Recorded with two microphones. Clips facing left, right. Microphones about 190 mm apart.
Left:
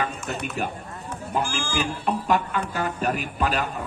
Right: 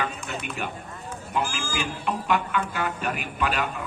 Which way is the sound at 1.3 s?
40° left (ahead or behind).